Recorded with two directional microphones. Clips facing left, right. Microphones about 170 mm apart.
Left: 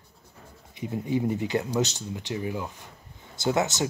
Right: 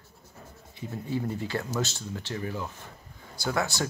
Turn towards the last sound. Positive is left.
turn(degrees=20)  # may be behind; listen again after turning